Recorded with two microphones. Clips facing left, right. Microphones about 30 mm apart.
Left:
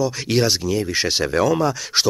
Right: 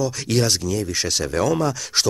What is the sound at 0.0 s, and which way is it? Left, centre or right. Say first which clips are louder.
Speech: left 2 dB; centre.